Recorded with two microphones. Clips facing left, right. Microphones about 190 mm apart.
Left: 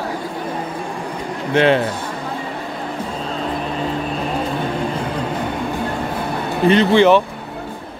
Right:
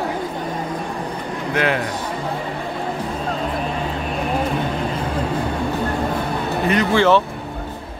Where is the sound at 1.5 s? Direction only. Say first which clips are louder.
Left 7 dB; 25° left (ahead or behind).